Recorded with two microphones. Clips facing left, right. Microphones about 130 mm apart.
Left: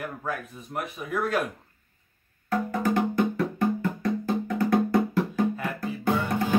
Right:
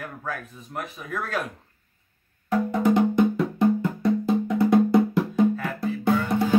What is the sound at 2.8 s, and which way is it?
Music, 20° right (ahead or behind).